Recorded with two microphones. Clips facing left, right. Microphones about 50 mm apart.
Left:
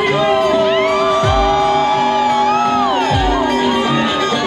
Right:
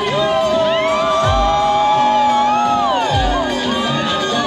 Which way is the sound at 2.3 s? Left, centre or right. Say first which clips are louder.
Even; left.